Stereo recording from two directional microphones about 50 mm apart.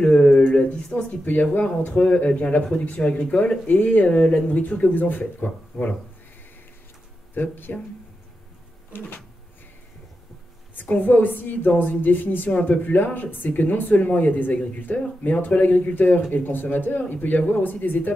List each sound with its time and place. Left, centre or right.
0.0 s a sound: centre
0.6 s speech: centre
1.2 s speech: left
7.3 s speech: left
10.7 s speech: left